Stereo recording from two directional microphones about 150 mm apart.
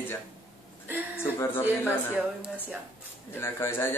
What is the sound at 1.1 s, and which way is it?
A man's voice, 15° left (ahead or behind).